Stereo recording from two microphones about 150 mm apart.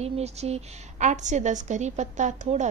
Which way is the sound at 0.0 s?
45° right (ahead or behind).